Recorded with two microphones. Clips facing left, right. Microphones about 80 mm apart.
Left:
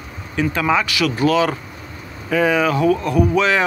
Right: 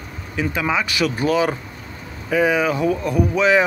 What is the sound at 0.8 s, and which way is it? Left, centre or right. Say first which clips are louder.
Speech: left 2 dB; right.